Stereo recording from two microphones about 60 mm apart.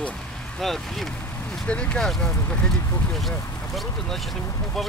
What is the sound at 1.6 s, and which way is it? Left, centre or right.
Speech, centre.